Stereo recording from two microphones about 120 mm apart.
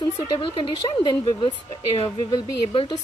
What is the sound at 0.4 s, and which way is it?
A woman's voice, 45° left (ahead or behind).